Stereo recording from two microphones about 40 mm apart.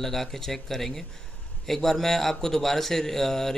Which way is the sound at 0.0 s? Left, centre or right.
Centre.